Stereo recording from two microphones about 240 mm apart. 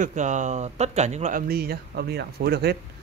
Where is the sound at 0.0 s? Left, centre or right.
Right.